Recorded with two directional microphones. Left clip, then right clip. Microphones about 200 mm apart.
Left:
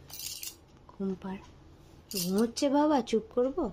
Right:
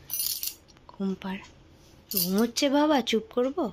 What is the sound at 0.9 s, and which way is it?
Speech, 5° right (ahead or behind).